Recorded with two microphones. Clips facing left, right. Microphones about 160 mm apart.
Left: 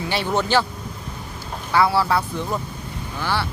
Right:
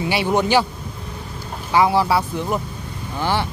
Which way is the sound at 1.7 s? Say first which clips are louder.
Right 2 dB; 15° right (ahead or behind).